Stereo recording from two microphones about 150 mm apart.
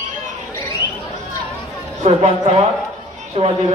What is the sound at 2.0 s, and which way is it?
A woman's voice, 40° right (ahead or behind).